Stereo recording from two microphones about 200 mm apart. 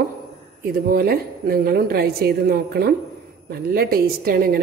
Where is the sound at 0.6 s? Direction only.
45° right (ahead or behind).